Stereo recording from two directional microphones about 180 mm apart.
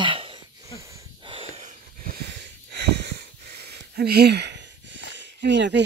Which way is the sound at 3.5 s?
65° right (ahead or behind).